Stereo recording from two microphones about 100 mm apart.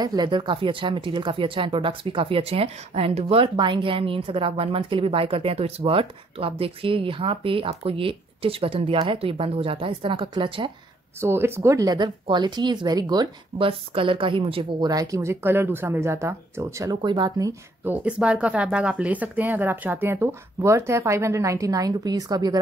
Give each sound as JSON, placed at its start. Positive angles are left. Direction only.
{"t": 0.0, "sound": "speech", "side_deg": -45}
{"t": 11.1, "sound": "speech", "side_deg": -25}
{"t": 13.6, "sound": "speech", "side_deg": -60}
{"t": 14.8, "sound": "speech", "side_deg": -40}
{"t": 17.8, "sound": "speech", "side_deg": -10}